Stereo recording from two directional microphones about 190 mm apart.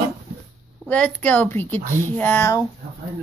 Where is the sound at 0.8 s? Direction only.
5° left (ahead or behind).